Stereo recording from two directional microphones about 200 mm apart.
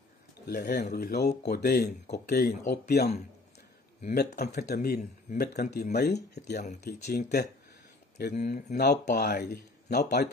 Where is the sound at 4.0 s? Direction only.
40° left (ahead or behind).